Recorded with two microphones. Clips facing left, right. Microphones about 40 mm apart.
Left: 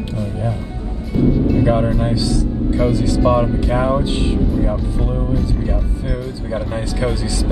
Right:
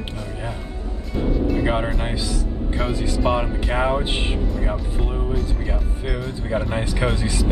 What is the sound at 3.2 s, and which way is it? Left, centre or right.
Speech, centre.